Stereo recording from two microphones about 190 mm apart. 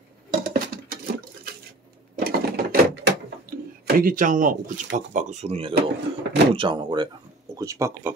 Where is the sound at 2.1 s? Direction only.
55° right (ahead or behind).